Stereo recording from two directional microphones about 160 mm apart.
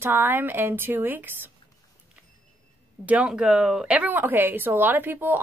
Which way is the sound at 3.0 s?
5° right (ahead or behind).